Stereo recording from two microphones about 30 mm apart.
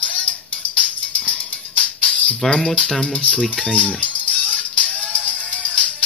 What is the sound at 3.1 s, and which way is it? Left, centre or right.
Speech, left.